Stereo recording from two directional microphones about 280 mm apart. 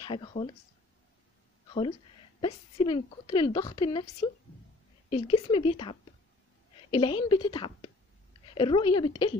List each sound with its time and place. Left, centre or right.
0.0 s speech: centre
1.7 s a woman's voice: centre
5.1 s a woman's voice: centre